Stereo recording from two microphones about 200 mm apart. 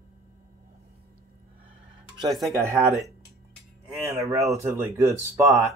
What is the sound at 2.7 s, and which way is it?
Speech, 15° right (ahead or behind).